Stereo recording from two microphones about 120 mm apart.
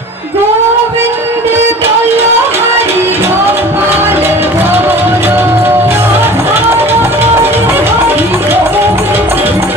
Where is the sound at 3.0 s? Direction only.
15° right (ahead or behind).